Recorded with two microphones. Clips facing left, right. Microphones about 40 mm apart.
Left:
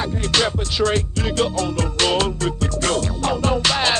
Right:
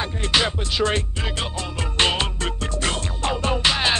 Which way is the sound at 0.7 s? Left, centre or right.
Right.